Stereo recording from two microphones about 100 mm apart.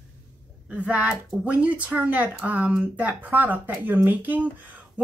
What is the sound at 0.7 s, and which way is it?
Speech, 10° right (ahead or behind).